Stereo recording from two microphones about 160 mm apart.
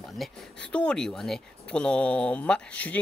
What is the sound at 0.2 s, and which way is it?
Speech, 5° left (ahead or behind).